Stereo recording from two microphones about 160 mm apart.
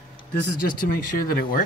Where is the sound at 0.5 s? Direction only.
65° left (ahead or behind).